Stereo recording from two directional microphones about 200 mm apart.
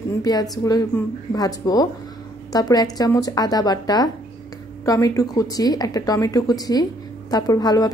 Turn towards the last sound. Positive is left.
turn(degrees=20)  # may be behind; listen again after turning